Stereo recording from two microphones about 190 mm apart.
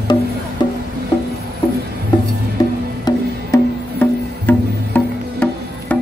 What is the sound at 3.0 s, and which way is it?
Music, 10° left (ahead or behind).